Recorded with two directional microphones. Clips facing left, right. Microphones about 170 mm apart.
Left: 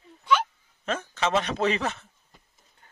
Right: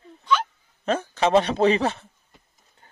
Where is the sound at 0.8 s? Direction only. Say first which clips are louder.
Right 6 dB; 35° right (ahead or behind).